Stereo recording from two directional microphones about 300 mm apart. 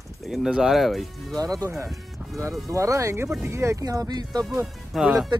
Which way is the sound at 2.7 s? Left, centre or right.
Centre.